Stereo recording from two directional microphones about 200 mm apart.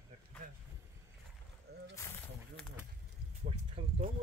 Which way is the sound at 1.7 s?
55° right (ahead or behind).